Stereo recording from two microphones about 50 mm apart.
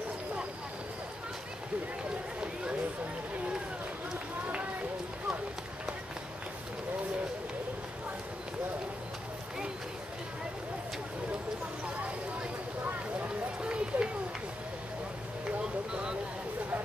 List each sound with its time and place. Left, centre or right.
13.6 s run: centre
15.6 s vehicle: centre